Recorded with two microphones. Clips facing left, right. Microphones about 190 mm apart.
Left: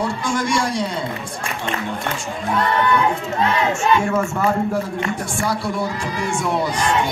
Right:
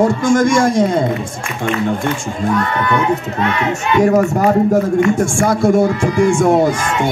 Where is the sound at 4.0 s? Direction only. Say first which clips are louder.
Right 8 dB; 40° right (ahead or behind).